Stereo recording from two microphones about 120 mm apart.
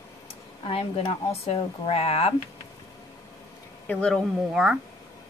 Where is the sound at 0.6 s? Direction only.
50° left (ahead or behind).